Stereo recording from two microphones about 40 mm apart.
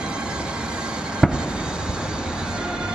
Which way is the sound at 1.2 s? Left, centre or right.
Centre.